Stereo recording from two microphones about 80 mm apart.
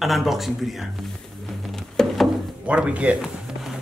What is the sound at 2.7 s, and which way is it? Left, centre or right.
Speech, centre.